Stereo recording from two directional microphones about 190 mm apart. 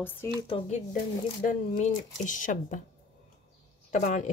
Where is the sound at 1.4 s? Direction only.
45° left (ahead or behind).